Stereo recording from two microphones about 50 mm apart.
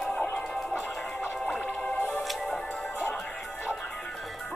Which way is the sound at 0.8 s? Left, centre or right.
Left.